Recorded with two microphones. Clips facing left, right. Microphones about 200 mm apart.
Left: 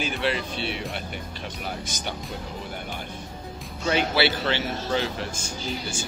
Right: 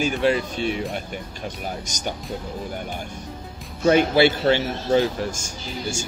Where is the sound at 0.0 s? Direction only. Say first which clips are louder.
Right 6 dB; 45° right (ahead or behind).